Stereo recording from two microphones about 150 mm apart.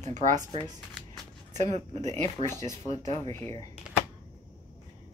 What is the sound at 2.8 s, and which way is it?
Speech, 40° right (ahead or behind).